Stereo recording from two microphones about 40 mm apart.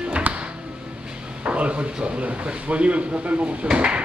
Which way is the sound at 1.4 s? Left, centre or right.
Right.